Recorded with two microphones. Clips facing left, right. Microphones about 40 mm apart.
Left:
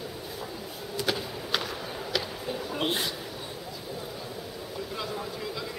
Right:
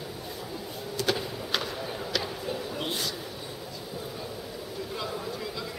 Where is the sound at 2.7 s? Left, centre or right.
Left.